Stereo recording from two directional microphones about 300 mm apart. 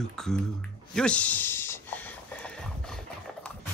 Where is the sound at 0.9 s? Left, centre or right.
Centre.